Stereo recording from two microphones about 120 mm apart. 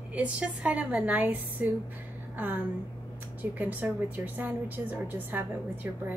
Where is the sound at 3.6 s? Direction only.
15° right (ahead or behind).